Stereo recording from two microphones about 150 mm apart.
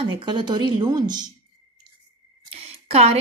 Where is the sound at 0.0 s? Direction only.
30° right (ahead or behind).